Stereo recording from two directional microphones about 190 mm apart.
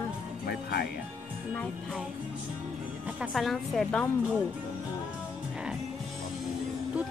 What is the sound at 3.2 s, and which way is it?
Speech, centre (ahead or behind).